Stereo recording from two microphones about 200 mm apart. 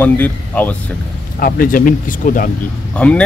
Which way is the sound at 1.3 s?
45° left (ahead or behind).